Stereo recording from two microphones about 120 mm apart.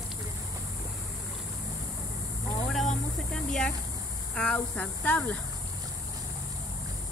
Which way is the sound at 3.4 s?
5° left (ahead or behind).